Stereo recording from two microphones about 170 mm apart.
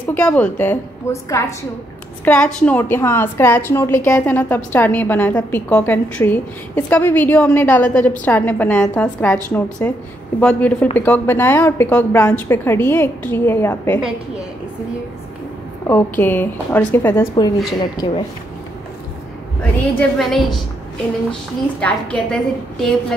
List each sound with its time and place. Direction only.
0.1 s a woman's voice: 10° left (ahead or behind)
2.2 s a woman's voice: 5° left (ahead or behind)
15.9 s a woman's voice: 15° left (ahead or behind)
19.6 s a woman's voice: 10° left (ahead or behind)